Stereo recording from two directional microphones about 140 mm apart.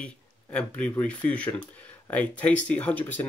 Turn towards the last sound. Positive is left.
turn(degrees=10)  # may be behind; listen again after turning